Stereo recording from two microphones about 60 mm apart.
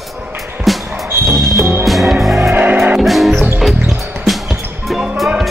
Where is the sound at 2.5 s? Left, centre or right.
Right.